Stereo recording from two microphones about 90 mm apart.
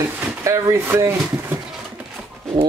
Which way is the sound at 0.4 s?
35° right (ahead or behind).